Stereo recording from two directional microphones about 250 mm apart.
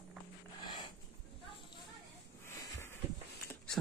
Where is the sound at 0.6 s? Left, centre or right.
Centre.